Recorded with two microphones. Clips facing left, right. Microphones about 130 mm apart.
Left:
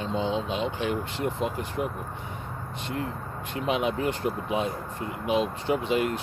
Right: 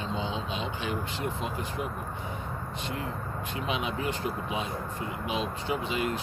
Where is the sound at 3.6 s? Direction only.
55° left (ahead or behind).